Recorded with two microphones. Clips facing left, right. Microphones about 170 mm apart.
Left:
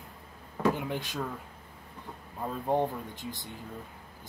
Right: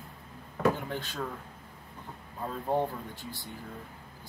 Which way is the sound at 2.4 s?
15° left (ahead or behind).